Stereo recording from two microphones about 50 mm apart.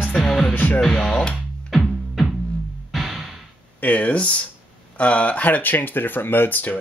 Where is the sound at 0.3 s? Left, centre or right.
Centre.